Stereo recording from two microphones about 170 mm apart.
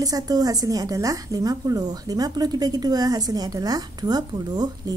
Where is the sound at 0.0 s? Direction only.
20° right (ahead or behind).